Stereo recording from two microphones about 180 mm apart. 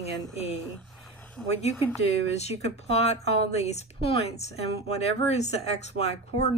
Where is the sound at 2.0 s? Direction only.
35° left (ahead or behind).